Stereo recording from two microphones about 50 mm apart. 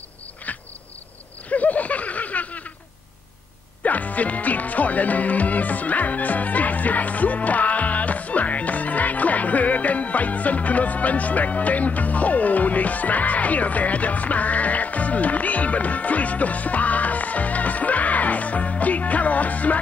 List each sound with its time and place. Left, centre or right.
0.5 s insect: left
1.5 s a sound: left
3.8 s music: left